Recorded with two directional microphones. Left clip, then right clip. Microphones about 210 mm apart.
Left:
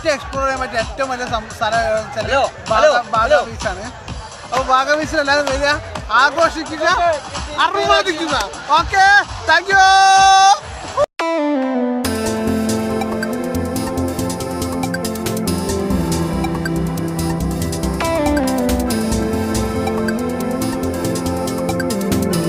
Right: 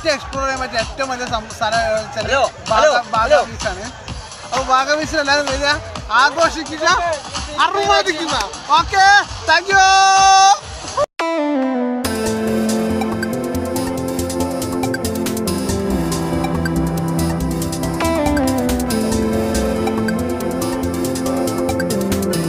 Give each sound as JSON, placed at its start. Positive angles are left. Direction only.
{"t": 0.0, "sound": "speech", "side_deg": 5}
{"t": 2.2, "sound": "speech", "side_deg": -20}
{"t": 3.0, "sound": "speech", "side_deg": 0}
{"t": 4.6, "sound": "speech", "side_deg": 5}
{"t": 7.9, "sound": "a sound", "side_deg": 5}
{"t": 16.9, "sound": "music", "side_deg": 0}